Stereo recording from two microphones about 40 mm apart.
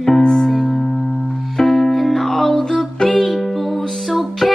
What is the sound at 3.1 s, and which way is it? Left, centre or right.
Music, left.